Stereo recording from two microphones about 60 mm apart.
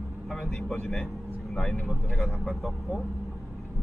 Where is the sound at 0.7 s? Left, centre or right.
Centre.